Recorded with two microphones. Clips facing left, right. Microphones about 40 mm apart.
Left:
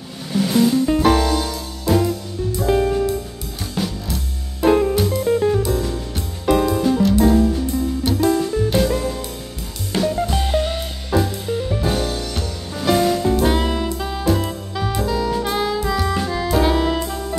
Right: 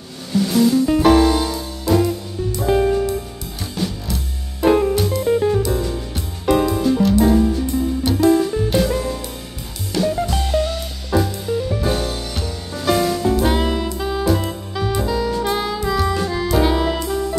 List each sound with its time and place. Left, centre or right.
0.3 s music: centre
0.8 s music: centre
1.9 s music: centre
10.2 s music: centre
11.1 s music: centre